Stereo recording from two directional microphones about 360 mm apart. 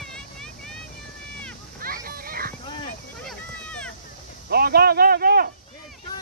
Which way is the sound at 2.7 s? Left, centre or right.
Centre.